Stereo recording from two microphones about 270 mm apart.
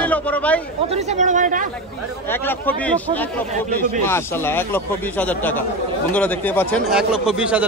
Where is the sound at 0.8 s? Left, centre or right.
Right.